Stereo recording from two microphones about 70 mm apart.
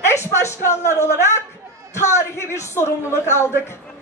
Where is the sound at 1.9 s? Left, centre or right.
Left.